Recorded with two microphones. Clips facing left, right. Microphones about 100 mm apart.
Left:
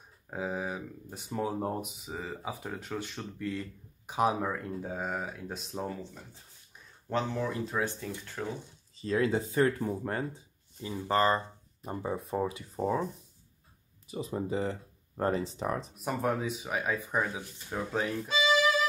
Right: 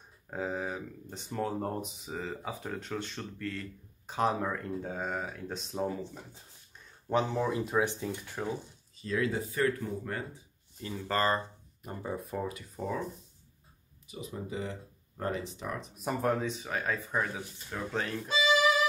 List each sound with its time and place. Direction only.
0.3 s speech: 5° left (ahead or behind)
7.1 s speech: 15° right (ahead or behind)
9.0 s speech: 30° left (ahead or behind)
10.8 s speech: 15° left (ahead or behind)
14.5 s speech: 40° left (ahead or behind)
16.0 s speech: centre (ahead or behind)